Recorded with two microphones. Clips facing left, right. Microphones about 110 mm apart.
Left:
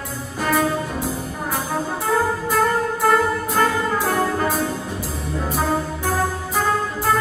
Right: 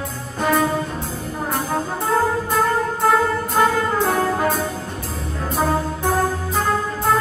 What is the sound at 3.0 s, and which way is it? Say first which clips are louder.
Music: even; 5° right (ahead or behind).